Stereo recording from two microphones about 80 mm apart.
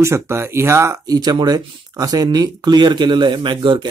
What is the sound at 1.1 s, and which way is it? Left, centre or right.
Speech, right.